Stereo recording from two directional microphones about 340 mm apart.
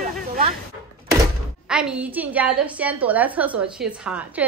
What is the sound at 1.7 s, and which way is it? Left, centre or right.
A woman's voice, centre.